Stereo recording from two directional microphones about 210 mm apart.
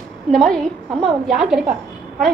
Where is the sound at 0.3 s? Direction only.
5° left (ahead or behind).